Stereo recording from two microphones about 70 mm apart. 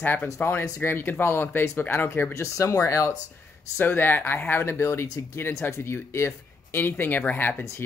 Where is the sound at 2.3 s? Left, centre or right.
Left.